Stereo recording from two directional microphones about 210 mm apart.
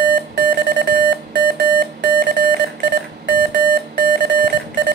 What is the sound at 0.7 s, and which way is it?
Alarm clock, 55° right (ahead or behind).